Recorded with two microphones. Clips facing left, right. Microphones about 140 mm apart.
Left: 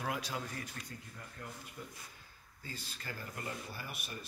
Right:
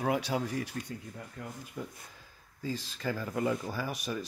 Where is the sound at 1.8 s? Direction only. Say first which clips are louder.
Right 8 dB; 90° right.